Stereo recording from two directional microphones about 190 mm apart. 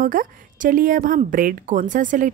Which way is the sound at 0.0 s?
45° right (ahead or behind).